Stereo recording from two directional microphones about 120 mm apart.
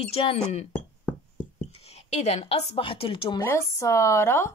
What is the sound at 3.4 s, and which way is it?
Speech, 25° left (ahead or behind).